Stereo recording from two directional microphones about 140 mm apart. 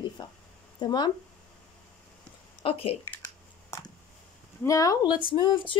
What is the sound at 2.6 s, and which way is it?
Speech, 45° left (ahead or behind).